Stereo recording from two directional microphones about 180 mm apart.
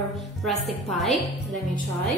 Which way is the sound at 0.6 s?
Centre (ahead or behind).